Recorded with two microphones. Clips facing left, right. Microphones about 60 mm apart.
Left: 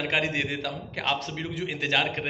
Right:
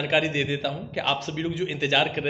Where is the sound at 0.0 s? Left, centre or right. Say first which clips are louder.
Right 3 dB; left.